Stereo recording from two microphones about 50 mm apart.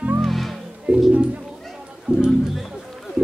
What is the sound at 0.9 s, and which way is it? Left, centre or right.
Music, right.